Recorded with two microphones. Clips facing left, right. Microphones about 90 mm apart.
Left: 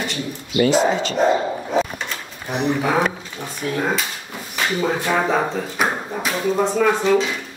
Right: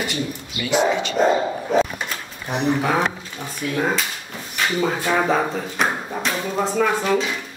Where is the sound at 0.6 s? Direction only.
35° left (ahead or behind).